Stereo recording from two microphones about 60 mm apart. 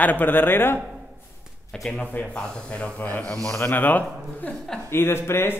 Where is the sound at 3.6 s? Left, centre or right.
Left.